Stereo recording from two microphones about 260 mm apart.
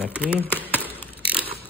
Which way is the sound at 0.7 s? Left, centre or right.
Centre.